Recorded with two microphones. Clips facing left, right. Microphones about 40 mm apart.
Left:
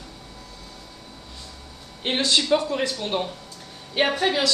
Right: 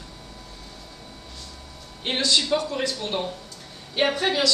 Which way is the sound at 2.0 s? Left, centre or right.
Left.